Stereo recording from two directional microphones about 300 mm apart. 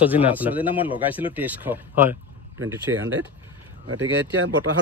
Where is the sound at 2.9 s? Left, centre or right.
Right.